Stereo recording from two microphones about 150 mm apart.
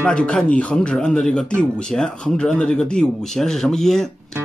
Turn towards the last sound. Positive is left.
turn(degrees=5)  # may be behind; listen again after turning